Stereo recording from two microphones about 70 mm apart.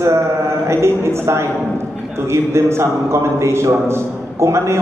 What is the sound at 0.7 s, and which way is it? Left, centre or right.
A man's voice, right.